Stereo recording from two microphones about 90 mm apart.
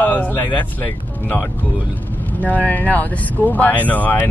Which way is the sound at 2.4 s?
15° left (ahead or behind).